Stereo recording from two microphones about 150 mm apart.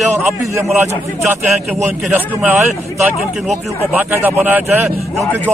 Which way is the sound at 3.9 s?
10° right (ahead or behind).